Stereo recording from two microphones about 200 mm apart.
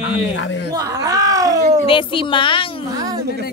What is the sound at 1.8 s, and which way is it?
Speech, 25° left (ahead or behind).